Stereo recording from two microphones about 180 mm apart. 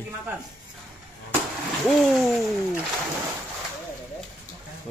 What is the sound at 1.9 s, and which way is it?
Speech, centre (ahead or behind).